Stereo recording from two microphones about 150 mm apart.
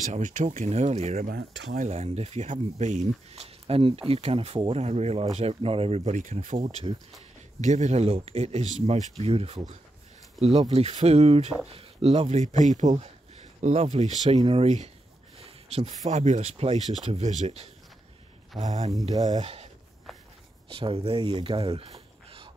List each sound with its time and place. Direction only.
0.0 s speech: 60° right (ahead or behind)
0.7 s speech: 45° right (ahead or behind)
1.2 s speech: 70° right (ahead or behind)
1.9 s speech: 45° right (ahead or behind)
15.3 s a sound: 40° right (ahead or behind)
16.1 s speech: 50° right (ahead or behind)
20.7 s speech: 40° right (ahead or behind)